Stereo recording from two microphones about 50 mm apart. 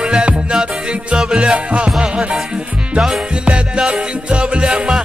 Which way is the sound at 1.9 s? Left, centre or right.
Centre.